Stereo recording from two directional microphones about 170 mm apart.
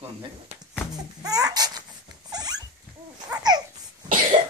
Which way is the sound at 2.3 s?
20° right (ahead or behind).